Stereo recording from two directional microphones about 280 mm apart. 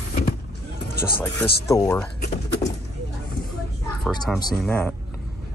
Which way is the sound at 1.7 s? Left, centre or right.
Centre.